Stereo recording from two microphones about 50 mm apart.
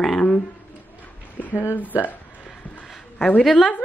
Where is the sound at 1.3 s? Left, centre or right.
Left.